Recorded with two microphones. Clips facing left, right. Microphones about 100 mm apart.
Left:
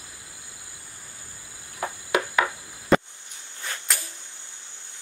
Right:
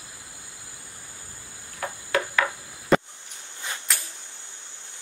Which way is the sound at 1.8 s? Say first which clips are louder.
Left 1 dB; 15° left (ahead or behind).